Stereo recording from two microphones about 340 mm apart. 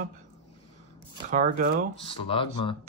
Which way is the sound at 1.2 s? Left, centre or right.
Right.